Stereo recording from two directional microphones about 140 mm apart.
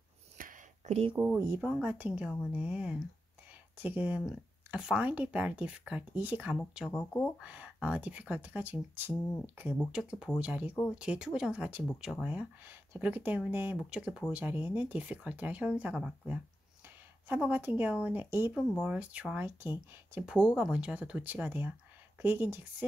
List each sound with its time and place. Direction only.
0.4 s a sound: 90° right
0.8 s speech: 50° right (ahead or behind)
1.1 s speech: 15° right (ahead or behind)